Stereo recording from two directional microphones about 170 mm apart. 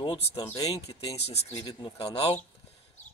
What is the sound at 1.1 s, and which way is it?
Speech, 35° left (ahead or behind).